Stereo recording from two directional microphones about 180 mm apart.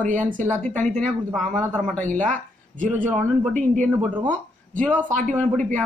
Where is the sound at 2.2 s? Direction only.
45° right (ahead or behind).